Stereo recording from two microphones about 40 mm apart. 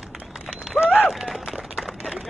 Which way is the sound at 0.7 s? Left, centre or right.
Centre.